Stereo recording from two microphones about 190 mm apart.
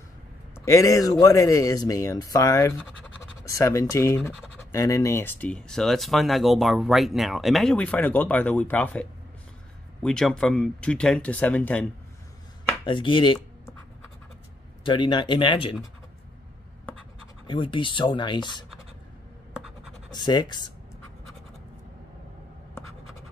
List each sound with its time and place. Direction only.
0.7 s speech: 15° left (ahead or behind)
10.0 s speech: 5° left (ahead or behind)
12.8 s speech: 25° left (ahead or behind)
14.8 s speech: 25° left (ahead or behind)
17.5 s speech: 25° left (ahead or behind)
20.1 s speech: 20° left (ahead or behind)